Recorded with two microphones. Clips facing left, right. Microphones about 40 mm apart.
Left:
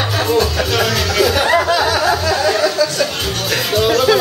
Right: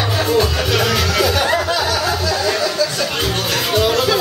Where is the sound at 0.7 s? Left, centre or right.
Centre.